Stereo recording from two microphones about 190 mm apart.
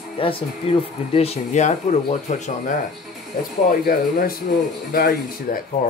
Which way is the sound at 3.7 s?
50° left (ahead or behind).